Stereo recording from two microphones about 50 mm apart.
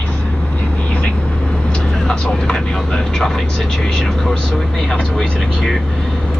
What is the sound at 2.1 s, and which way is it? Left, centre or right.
Speech, centre.